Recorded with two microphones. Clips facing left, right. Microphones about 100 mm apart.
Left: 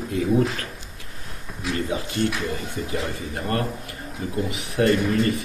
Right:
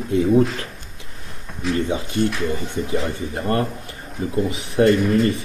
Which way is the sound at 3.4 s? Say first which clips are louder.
Right 4 dB; 30° right (ahead or behind).